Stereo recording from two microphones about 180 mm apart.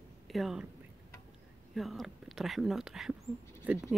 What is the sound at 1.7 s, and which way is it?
Speech, centre (ahead or behind).